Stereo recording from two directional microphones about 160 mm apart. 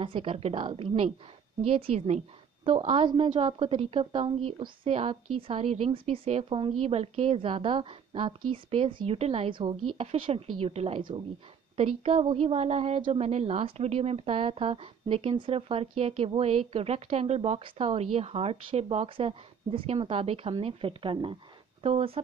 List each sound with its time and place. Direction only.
0.0 s a woman's voice: 35° right (ahead or behind)